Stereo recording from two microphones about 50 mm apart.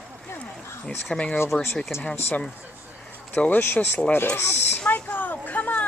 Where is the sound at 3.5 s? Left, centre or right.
Left.